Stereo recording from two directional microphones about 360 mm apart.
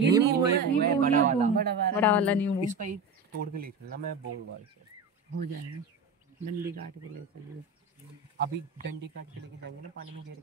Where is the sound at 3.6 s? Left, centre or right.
Right.